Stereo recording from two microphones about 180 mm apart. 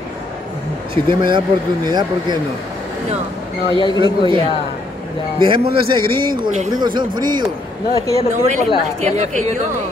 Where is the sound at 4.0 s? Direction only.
30° right (ahead or behind).